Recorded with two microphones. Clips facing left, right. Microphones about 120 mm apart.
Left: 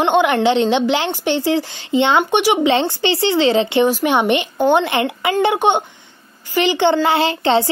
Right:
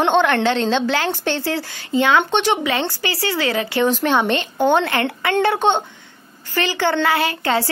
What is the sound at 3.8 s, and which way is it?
Speech, 10° left (ahead or behind).